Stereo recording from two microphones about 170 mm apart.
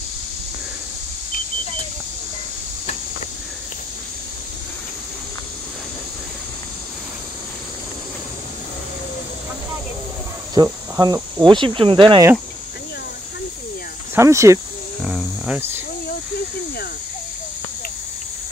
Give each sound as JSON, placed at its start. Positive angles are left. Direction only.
{"t": 10.5, "sound": "speech", "side_deg": -25}
{"t": 14.1, "sound": "speech", "side_deg": -15}
{"t": 15.0, "sound": "cricket", "side_deg": -5}